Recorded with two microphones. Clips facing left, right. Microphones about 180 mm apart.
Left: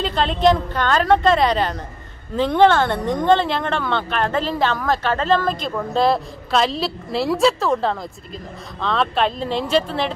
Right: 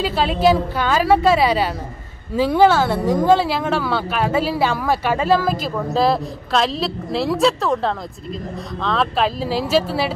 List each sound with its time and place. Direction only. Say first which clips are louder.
0.0 s a woman's voice: right 1 dB; 5° right (ahead or behind)